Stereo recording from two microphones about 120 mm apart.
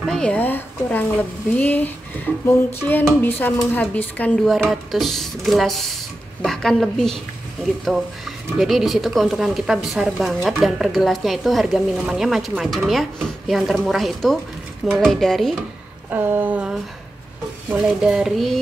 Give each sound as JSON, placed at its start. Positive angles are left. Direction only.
{"t": 0.0, "sound": "speech", "side_deg": 5}
{"t": 2.9, "sound": "speech", "side_deg": 15}
{"t": 4.5, "sound": "a woman's voice", "side_deg": 0}
{"t": 16.1, "sound": "a sound", "side_deg": -15}
{"t": 17.7, "sound": "a woman's voice", "side_deg": -5}